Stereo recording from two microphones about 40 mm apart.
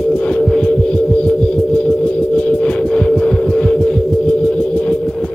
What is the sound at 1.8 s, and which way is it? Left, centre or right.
Music, left.